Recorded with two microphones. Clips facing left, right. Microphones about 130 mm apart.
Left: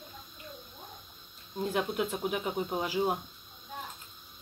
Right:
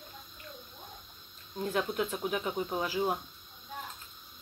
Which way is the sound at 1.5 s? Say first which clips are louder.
Left 1 dB; 15° left (ahead or behind).